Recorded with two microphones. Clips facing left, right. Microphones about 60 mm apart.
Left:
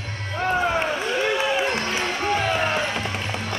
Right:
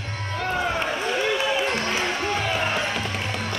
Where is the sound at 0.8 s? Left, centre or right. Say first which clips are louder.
Left 1 dB; centre.